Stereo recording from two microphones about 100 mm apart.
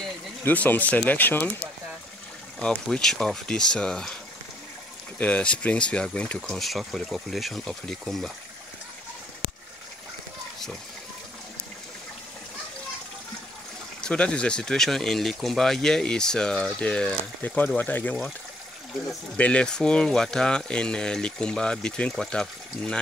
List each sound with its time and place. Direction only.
0.4 s speech: 15° left (ahead or behind)
2.6 s speech: 10° left (ahead or behind)
5.2 s speech: 10° left (ahead or behind)
14.0 s speech: 10° left (ahead or behind)
19.3 s speech: 10° left (ahead or behind)